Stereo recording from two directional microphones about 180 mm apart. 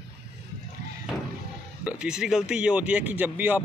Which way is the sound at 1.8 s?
5° right (ahead or behind).